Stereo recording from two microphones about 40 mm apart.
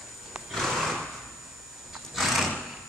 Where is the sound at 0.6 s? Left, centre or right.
Centre.